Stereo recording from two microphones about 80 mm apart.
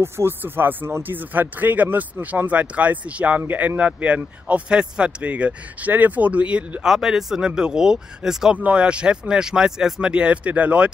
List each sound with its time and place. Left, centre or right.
0.0 s speech: right; by 8.5 s centre
8.5 s speech: centre